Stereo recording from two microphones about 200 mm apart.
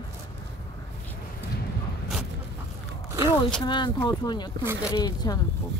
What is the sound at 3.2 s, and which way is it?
Speech, 25° left (ahead or behind).